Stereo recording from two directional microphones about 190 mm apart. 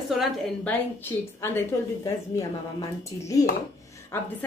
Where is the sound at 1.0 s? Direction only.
10° left (ahead or behind).